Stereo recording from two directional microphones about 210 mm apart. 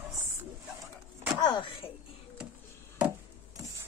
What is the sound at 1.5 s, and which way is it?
Speech, 20° left (ahead or behind).